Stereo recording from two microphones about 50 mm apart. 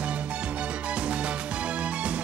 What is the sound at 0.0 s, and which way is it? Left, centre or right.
Music, right.